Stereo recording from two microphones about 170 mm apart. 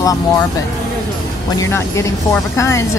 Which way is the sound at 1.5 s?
15° left (ahead or behind).